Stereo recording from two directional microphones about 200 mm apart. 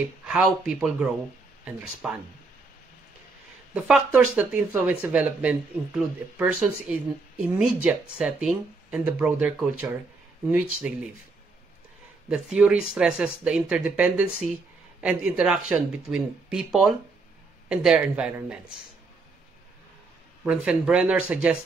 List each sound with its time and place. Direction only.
0.3 s speech: 5° right (ahead or behind)
3.7 s speech: 5° right (ahead or behind)
12.3 s speech: 5° right (ahead or behind)
20.4 s speech: 5° right (ahead or behind)